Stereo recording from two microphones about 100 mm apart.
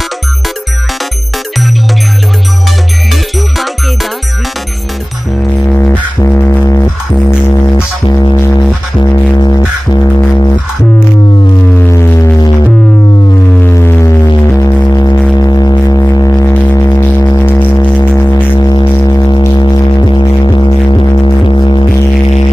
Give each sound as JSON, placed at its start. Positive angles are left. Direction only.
{"t": 3.1, "sound": "music", "side_deg": 0}
{"t": 5.8, "sound": "music", "side_deg": 25}
{"t": 11.9, "sound": "a sound", "side_deg": 25}
{"t": 13.6, "sound": "music", "side_deg": 25}
{"t": 16.0, "sound": "a sound", "side_deg": 35}
{"t": 16.4, "sound": "music", "side_deg": 25}
{"t": 18.2, "sound": "music", "side_deg": 40}